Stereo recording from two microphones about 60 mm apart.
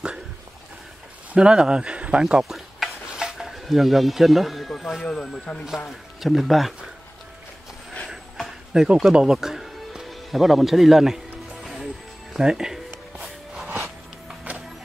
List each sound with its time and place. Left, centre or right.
1.3 s speech: centre
2.2 s speech: centre
5.0 s speech: centre
5.8 s speech: centre
8.4 s music: centre
12.4 s a sound: centre